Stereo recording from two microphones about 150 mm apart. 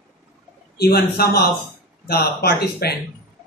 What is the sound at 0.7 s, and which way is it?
Speech, 90° left.